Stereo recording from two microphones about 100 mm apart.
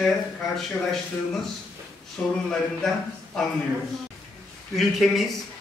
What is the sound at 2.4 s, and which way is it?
A man's voice, 5° left (ahead or behind).